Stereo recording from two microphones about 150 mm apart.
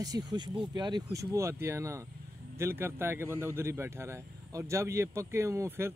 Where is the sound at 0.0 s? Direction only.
25° right (ahead or behind).